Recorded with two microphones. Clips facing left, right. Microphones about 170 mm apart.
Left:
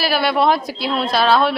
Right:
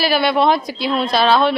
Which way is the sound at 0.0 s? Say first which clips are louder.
Right 1 dB; centre (ahead or behind).